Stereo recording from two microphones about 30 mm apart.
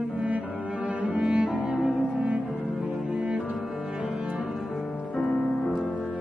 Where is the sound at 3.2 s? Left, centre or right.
Right.